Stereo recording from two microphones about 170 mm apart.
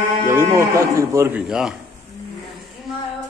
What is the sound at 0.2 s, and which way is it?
Speech, 15° right (ahead or behind).